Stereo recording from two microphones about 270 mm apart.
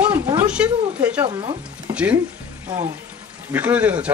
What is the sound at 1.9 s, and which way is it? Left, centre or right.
Speech, centre.